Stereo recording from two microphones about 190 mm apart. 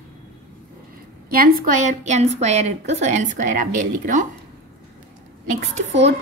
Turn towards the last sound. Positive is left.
turn(degrees=-35)  # may be behind; listen again after turning